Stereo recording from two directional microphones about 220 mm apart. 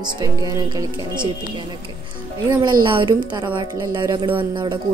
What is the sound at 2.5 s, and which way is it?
A woman's voice, 20° right (ahead or behind).